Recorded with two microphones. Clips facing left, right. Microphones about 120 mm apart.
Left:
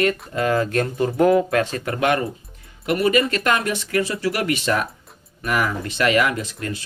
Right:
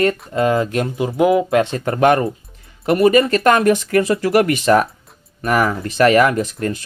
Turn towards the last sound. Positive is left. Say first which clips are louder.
# right 7 dB
turn(degrees=-45)  # may be behind; listen again after turning